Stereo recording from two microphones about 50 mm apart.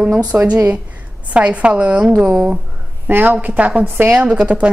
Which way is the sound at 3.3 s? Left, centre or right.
Right.